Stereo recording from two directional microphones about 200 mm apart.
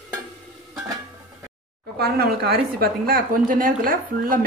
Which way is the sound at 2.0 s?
50° right (ahead or behind).